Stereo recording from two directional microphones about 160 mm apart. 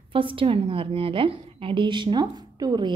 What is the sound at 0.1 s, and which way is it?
Speech, 35° right (ahead or behind).